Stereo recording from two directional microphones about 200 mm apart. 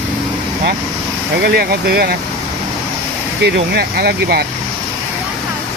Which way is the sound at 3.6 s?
55° right (ahead or behind).